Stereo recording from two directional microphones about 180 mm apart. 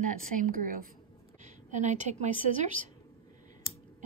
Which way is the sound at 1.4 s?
40° right (ahead or behind).